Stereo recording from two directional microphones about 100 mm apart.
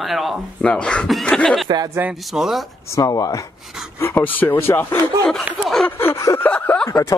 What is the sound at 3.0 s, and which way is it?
Speech, 35° left (ahead or behind).